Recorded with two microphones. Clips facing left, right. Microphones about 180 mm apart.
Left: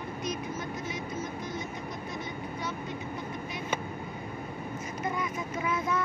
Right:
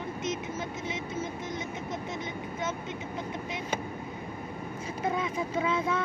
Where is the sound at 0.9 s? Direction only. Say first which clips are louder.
Right 1 dB; 25° right (ahead or behind).